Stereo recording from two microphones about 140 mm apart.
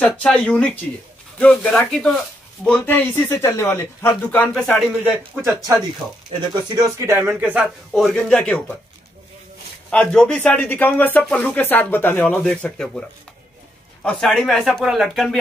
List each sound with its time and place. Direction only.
0.0 s speech: 10° left (ahead or behind)
4.6 s speech: centre (ahead or behind)
5.0 s a man's voice: 15° right (ahead or behind)
6.0 s speech: centre (ahead or behind)
6.7 s speech: 25° right (ahead or behind)
7.2 s a man's voice: 10° right (ahead or behind)
7.9 s speech: 5° left (ahead or behind)
9.8 s speech: 5° left (ahead or behind)
14.0 s speech: 5° left (ahead or behind)